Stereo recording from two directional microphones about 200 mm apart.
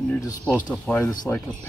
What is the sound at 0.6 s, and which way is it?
Speech, 5° left (ahead or behind).